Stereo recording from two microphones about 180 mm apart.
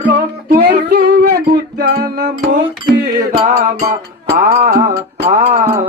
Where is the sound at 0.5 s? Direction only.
65° right (ahead or behind).